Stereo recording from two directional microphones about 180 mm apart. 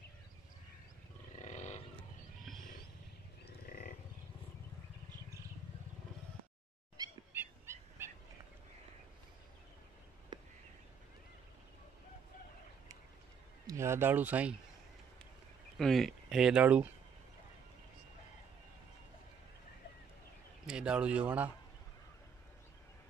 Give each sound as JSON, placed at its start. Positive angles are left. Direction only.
{"t": 1.4, "sound": "wild animals", "side_deg": 40}
{"t": 3.4, "sound": "livestock", "side_deg": 55}
{"t": 7.3, "sound": "owl", "side_deg": -15}
{"t": 10.3, "sound": "a sound", "side_deg": -25}
{"t": 13.7, "sound": "speech", "side_deg": -15}
{"t": 15.8, "sound": "speech", "side_deg": 0}
{"t": 20.6, "sound": "speech", "side_deg": -5}